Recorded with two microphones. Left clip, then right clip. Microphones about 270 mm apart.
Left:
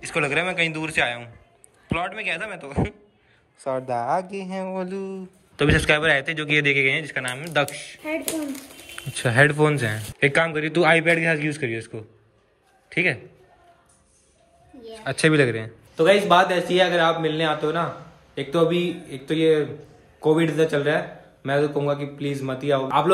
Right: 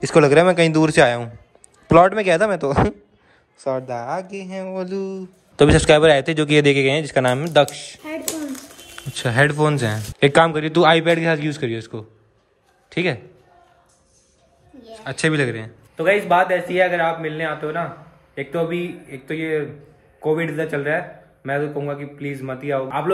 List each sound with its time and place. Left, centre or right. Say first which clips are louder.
0.0 s speech: right 10 dB; centre
11.3 s a man's voice: right 2 dB; right
11.9 s speech: right 3 dB; centre
14.8 s a man's voice: left 1 dB; centre
16.0 s a man's voice: even; centre